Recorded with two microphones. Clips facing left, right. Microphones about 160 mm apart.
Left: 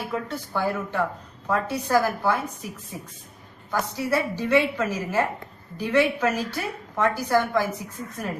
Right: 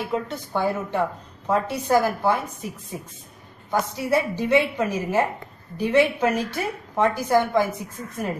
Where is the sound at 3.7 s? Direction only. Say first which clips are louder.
Right 3 dB; 20° right (ahead or behind).